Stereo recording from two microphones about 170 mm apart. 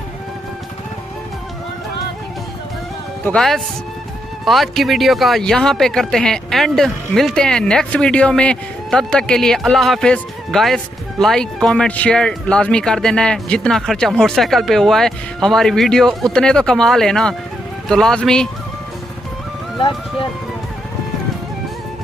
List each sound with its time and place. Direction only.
3.3 s speech: 5° left (ahead or behind)
19.8 s speech: 30° left (ahead or behind)